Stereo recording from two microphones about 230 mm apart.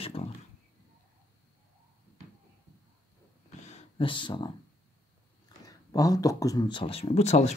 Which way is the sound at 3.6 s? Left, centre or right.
Left.